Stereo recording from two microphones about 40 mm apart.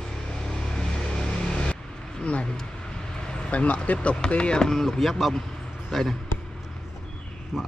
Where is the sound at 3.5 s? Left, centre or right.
Left.